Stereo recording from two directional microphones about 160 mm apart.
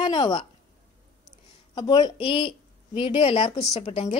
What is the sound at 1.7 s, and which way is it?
A woman's voice, 25° left (ahead or behind).